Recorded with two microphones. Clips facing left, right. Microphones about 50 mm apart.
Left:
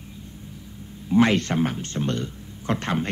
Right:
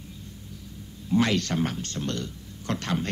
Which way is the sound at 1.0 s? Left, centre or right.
Left.